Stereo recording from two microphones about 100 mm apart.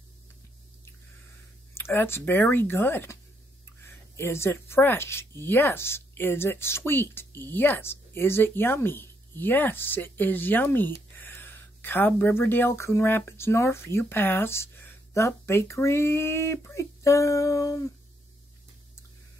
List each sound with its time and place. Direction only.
1.7 s speech: 25° left (ahead or behind)